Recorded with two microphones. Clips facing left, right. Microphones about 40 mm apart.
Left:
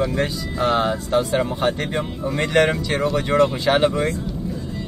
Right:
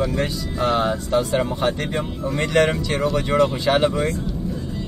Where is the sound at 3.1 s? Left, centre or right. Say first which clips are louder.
Left 1 dB; left.